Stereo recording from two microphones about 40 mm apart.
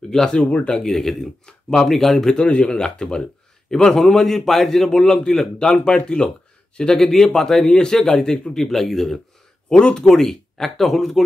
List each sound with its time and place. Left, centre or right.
0.4 s speech: left
0.8 s a man's voice: centre
2.3 s a man's voice: left
7.3 s a man's voice: centre
9.7 s a man's voice: left; by 11.2 s centre